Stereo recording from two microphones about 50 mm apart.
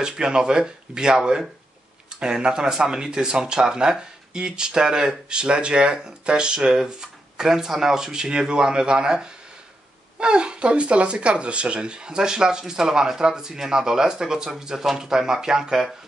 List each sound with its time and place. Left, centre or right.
0.0 s speech: centre